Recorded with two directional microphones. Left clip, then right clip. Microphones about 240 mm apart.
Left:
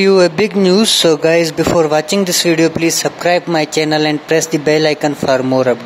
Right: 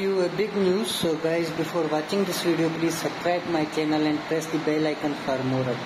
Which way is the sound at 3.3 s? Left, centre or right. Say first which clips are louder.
Left 12 dB; left.